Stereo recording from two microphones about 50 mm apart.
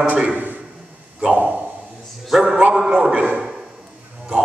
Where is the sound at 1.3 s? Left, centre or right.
Right.